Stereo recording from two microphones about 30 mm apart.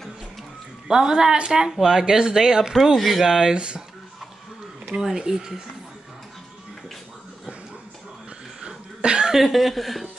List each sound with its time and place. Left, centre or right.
0.8 s speech: right
3.0 s speech: centre
3.3 s speech: centre
3.5 s speech: right
5.1 s speech: right
8.5 s cough: right
9.3 s speech: centre